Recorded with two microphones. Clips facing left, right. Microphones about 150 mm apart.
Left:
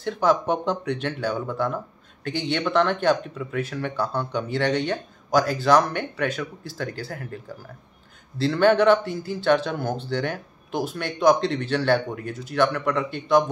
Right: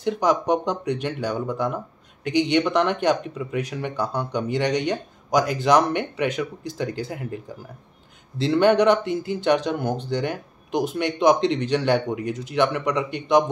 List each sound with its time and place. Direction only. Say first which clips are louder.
0.0 s speech: even; 15° right (ahead or behind)